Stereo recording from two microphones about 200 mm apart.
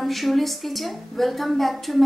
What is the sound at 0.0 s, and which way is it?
A woman's voice, centre (ahead or behind).